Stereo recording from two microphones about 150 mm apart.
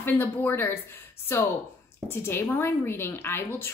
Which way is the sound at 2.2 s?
15° left (ahead or behind).